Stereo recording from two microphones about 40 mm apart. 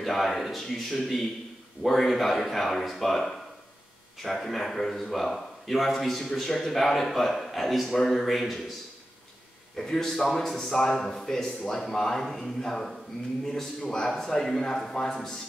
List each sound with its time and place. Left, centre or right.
0.0 s speech: centre
9.8 s a man's voice: centre